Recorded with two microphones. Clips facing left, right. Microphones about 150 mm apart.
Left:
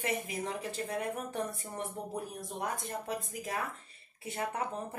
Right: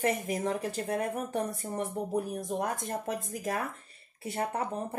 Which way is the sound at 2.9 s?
45° right (ahead or behind).